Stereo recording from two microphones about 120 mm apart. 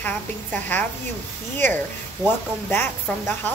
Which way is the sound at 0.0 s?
15° left (ahead or behind).